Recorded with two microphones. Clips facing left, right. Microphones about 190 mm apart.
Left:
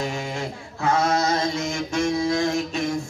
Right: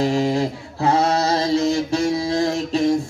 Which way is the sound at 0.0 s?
35° right (ahead or behind).